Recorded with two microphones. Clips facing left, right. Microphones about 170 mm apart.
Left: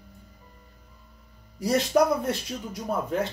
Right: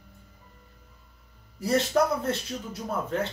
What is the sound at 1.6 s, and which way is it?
Speech, 15° left (ahead or behind).